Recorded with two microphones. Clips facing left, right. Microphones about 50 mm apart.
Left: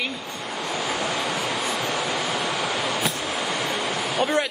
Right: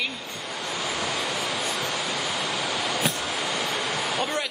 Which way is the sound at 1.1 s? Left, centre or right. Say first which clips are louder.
Left 2 dB; left.